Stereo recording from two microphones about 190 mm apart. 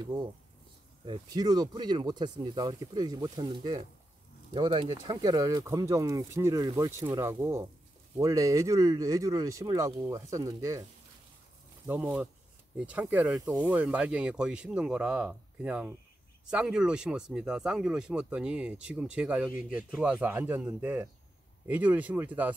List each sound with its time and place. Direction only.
0.0 s speech: 20° right (ahead or behind)
11.9 s speech: 5° right (ahead or behind)